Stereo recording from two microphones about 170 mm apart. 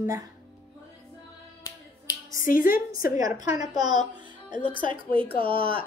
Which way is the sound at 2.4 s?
55° left (ahead or behind).